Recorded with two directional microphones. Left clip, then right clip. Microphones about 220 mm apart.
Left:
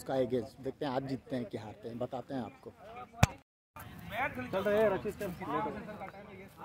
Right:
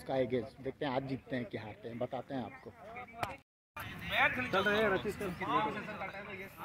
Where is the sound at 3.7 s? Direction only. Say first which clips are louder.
Right 5 dB; 45° left (ahead or behind).